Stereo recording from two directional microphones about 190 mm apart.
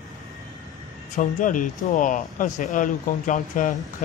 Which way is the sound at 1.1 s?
45° left (ahead or behind).